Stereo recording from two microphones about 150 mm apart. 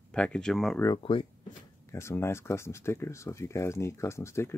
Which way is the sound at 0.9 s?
35° left (ahead or behind).